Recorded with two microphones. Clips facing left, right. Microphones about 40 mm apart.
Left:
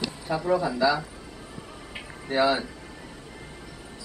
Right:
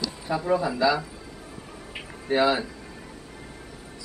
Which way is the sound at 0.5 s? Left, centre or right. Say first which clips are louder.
Even; right.